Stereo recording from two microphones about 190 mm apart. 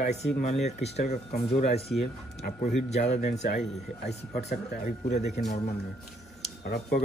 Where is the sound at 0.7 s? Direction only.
35° left (ahead or behind).